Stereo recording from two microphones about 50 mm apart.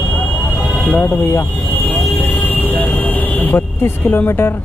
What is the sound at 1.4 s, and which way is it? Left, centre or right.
Vehicle, left.